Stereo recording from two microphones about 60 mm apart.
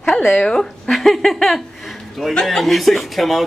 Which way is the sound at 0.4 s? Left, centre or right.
Centre.